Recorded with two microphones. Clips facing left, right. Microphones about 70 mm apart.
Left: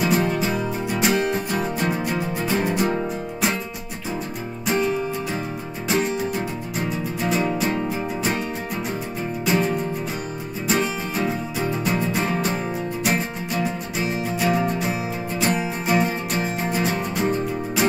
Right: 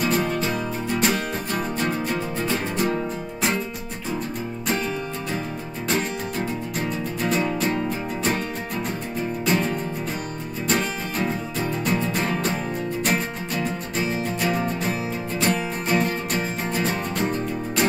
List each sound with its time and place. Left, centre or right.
0.0 s music: centre
4.6 s music: centre
9.5 s music: centre